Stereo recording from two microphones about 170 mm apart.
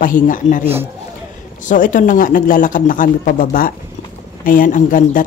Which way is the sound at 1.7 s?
50° left (ahead or behind).